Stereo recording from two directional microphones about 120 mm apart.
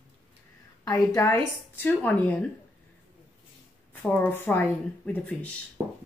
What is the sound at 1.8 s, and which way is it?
Speech, 15° left (ahead or behind).